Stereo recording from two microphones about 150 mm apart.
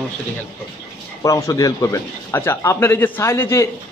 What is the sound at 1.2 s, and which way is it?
A man's voice, 20° left (ahead or behind).